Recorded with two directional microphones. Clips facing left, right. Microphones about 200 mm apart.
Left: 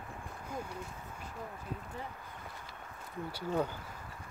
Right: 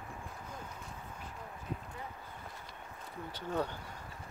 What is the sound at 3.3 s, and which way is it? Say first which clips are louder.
Speech: left 2 dB; 10° left (ahead or behind).